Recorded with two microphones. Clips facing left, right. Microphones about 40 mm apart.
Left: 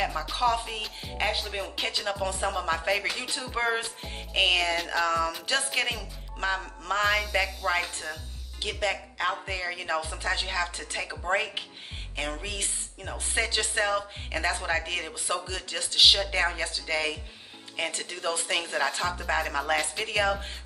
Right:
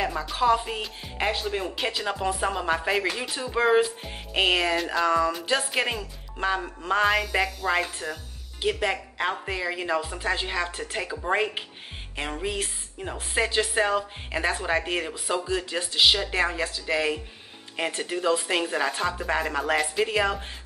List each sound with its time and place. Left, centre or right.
0.0 s speech: centre